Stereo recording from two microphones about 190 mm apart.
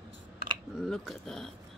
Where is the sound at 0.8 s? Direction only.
Centre (ahead or behind).